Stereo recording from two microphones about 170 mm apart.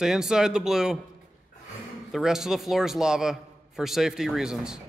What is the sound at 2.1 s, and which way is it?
A man's voice, 5° right (ahead or behind).